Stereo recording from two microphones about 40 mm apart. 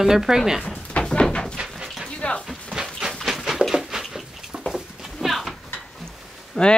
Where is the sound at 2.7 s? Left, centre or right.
Centre.